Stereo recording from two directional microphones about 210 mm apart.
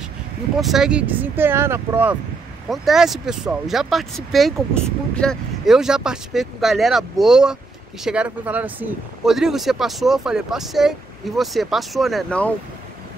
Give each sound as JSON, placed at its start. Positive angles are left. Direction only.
{"t": 0.6, "sound": "speech", "side_deg": 0}